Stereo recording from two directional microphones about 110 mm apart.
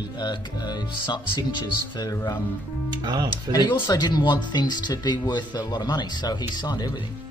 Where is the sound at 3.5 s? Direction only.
40° left (ahead or behind).